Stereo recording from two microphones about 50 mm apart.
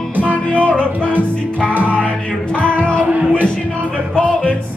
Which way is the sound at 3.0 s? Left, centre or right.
Right.